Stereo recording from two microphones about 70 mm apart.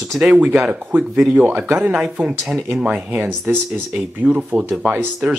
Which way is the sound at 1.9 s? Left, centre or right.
Centre.